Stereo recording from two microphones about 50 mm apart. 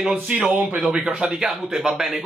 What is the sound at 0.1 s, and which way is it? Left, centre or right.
Speech, right.